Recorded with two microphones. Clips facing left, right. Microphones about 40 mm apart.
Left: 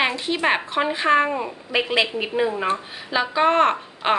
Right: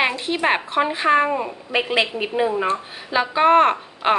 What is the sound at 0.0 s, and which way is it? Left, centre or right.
A woman's voice, centre.